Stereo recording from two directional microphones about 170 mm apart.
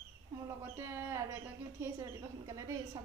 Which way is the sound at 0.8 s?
15° right (ahead or behind).